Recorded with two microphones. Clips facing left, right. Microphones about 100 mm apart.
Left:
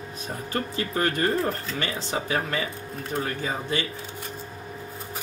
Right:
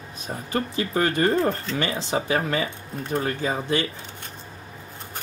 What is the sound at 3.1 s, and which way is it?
Speech, centre (ahead or behind).